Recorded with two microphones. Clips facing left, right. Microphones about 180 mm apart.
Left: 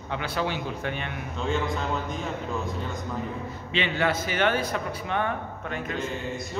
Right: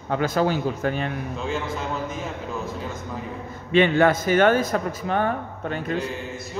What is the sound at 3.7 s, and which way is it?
A man's voice, 50° right (ahead or behind).